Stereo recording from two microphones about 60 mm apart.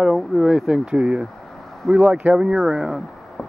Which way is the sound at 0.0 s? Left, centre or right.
Centre.